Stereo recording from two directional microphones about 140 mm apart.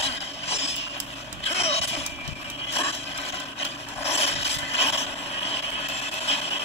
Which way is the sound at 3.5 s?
45° left (ahead or behind).